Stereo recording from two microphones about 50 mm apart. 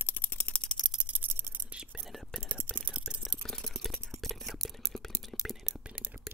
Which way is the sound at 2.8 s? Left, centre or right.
Right.